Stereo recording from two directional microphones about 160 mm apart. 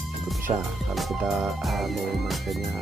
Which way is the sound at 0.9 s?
5° right (ahead or behind).